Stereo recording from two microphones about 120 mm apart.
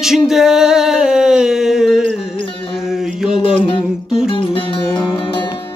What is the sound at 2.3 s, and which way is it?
Music, 45° left (ahead or behind).